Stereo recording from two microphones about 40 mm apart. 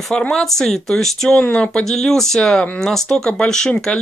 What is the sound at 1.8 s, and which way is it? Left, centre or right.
Speech, centre.